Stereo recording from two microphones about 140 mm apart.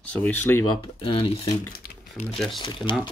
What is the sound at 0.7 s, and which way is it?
Speech, 35° left (ahead or behind).